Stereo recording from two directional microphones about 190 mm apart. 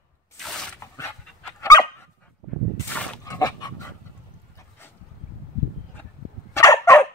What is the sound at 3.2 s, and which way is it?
Dog, 20° left (ahead or behind).